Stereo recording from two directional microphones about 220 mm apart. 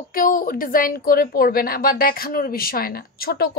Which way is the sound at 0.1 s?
40° left (ahead or behind).